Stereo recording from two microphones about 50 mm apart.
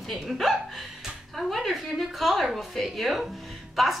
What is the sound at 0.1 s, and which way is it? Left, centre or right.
A woman's voice, centre.